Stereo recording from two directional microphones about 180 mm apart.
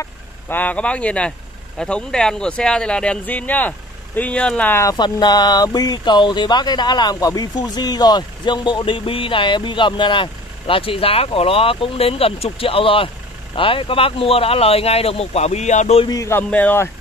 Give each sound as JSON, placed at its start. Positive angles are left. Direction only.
{"t": 0.0, "sound": "speech", "side_deg": 10}
{"t": 16.1, "sound": "speech", "side_deg": 15}